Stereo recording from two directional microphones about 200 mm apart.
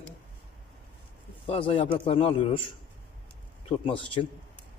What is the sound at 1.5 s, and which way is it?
A man's voice, 30° left (ahead or behind).